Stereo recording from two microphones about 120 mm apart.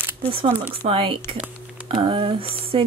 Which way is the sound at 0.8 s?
50° right (ahead or behind).